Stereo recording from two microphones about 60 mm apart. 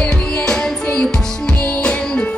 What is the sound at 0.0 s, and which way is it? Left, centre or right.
Music, centre.